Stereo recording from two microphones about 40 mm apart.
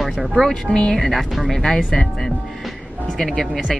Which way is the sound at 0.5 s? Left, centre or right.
Centre.